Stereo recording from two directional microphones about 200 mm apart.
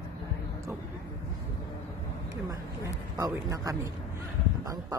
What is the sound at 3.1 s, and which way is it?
Speech, 15° right (ahead or behind).